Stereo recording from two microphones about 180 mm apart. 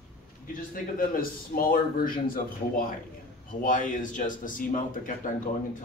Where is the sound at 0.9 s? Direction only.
55° left (ahead or behind).